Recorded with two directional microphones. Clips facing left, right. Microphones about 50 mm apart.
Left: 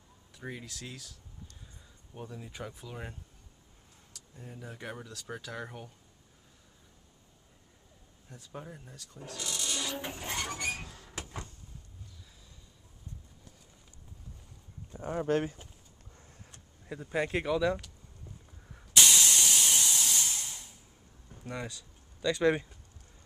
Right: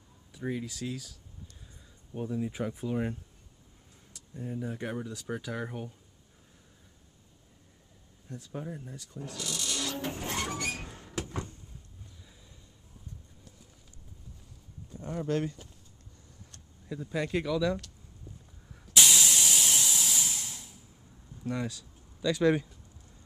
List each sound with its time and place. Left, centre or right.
0.3 s speech: centre
2.1 s speech: centre
8.5 s a sound: centre
14.9 s speech: left
16.8 s speech: left
18.9 s hiss: centre
21.5 s speech: centre